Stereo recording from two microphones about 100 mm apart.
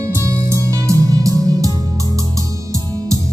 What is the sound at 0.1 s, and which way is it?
Music, 30° right (ahead or behind).